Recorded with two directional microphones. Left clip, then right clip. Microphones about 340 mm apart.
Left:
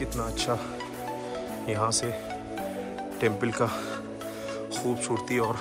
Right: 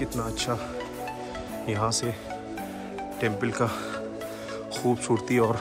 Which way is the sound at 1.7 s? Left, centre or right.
Centre.